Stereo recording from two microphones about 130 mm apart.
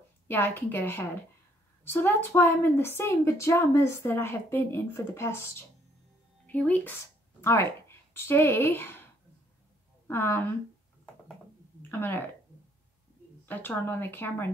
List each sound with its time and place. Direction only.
0.3 s a woman's voice: 15° left (ahead or behind)
8.1 s speech: 20° left (ahead or behind)
11.9 s speech: 15° left (ahead or behind)
13.5 s speech: 15° left (ahead or behind)